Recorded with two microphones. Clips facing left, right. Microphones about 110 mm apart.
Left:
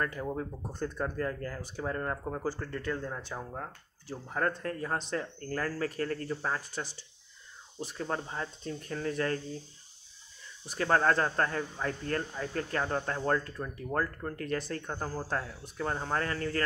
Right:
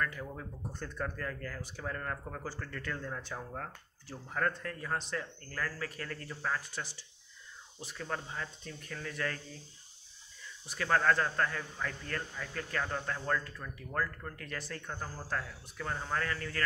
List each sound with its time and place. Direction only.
0.0 s speech: 35° left (ahead or behind)
10.7 s speech: 35° left (ahead or behind)